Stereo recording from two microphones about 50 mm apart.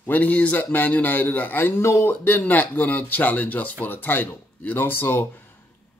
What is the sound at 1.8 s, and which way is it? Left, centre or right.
Speech, left.